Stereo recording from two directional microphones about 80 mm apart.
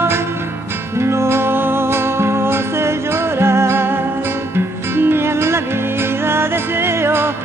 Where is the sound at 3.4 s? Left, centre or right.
Right.